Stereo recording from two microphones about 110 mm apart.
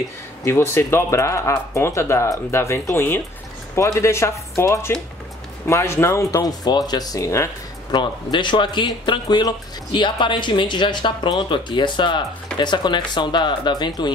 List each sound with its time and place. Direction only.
0.5 s speech: 25° left (ahead or behind)
7.9 s speech: 45° left (ahead or behind)